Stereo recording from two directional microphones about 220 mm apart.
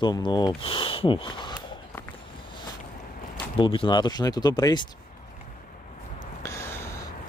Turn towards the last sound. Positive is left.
turn(degrees=10)  # may be behind; listen again after turning